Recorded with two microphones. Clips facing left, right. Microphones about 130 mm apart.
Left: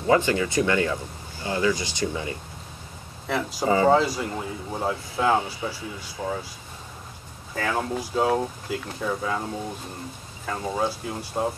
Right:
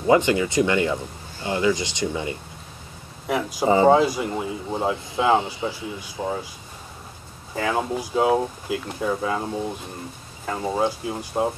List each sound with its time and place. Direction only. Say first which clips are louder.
0.0 s a man's voice: right 3 dB; 20° right (ahead or behind)
7.5 s a man's voice: right 3 dB; 15° right (ahead or behind)